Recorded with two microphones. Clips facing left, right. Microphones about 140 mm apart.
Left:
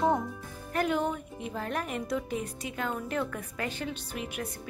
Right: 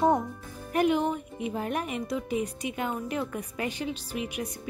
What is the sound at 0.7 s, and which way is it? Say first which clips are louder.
A woman's voice: right 4 dB; 10° right (ahead or behind).